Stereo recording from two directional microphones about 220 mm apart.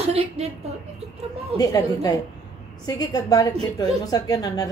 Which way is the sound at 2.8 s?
15° left (ahead or behind).